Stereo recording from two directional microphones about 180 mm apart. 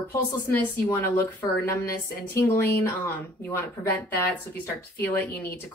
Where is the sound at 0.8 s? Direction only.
15° left (ahead or behind).